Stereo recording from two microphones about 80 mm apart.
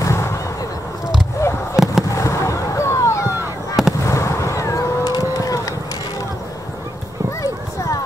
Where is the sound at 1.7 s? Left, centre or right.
Centre.